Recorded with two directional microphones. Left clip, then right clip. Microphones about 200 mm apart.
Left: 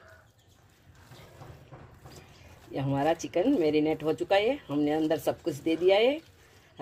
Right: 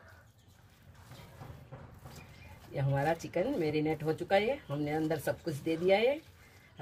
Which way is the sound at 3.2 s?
35° left (ahead or behind).